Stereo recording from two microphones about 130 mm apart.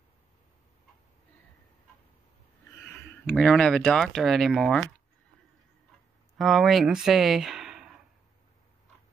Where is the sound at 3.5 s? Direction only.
5° left (ahead or behind).